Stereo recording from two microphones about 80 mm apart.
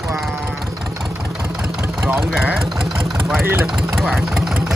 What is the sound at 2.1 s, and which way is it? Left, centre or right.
Speech, centre.